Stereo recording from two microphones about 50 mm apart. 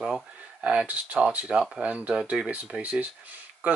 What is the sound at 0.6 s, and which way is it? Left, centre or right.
Speech, right.